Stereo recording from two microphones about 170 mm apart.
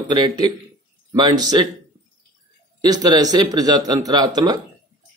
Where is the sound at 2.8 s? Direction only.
25° right (ahead or behind).